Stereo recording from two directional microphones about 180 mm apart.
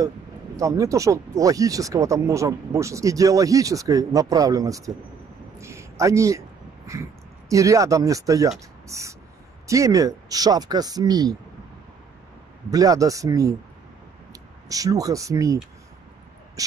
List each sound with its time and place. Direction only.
0.6 s a man's voice: 20° right (ahead or behind)
8.8 s a sound: 15° right (ahead or behind)
9.7 s speech: 20° right (ahead or behind)
12.7 s speech: 20° right (ahead or behind)